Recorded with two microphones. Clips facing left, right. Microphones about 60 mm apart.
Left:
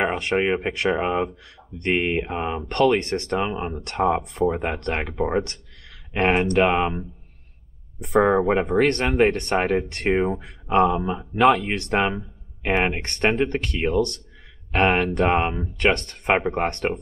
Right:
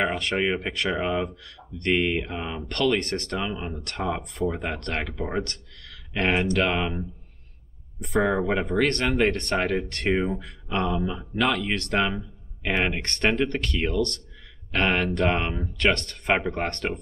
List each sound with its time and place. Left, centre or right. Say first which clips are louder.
0.0 s speech: left 3 dB; left
6.3 s speech: left 3 dB; left
6.6 s speech: left 5 dB; left
8.3 s speech: left 5 dB; left